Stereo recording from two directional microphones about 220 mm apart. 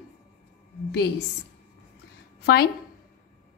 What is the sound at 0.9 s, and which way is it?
Speech, 50° left (ahead or behind).